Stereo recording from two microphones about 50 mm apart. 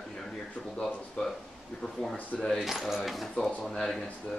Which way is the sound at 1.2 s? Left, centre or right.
Centre.